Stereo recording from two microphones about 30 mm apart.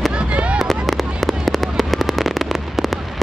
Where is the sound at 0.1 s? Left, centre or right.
Right.